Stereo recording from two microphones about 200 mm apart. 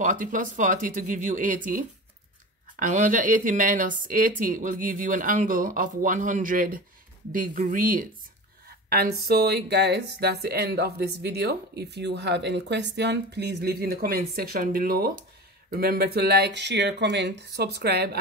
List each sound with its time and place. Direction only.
0.0 s speech: 40° right (ahead or behind)